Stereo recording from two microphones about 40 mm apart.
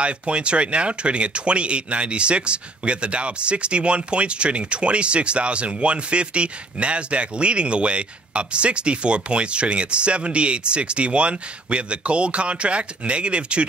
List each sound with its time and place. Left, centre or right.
0.0 s speech: right